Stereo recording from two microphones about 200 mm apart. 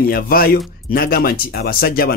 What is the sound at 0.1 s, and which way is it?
Speech, 45° left (ahead or behind).